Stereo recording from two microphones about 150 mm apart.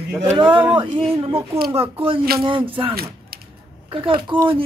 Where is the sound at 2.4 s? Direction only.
35° right (ahead or behind).